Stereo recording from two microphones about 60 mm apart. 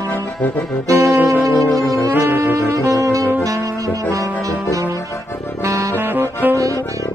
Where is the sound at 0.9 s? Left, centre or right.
Right.